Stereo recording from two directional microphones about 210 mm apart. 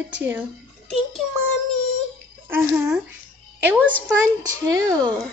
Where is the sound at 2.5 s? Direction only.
10° right (ahead or behind).